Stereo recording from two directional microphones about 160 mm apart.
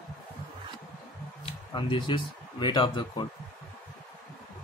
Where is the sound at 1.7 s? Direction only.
30° left (ahead or behind).